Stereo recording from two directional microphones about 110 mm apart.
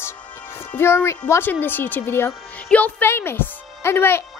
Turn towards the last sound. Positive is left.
turn(degrees=20)  # may be behind; listen again after turning